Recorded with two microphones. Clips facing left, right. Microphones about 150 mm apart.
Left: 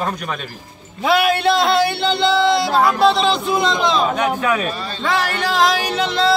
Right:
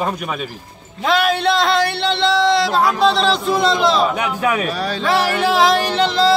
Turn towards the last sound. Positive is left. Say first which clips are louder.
# right 3 dB
turn(degrees=0)  # may be behind; listen again after turning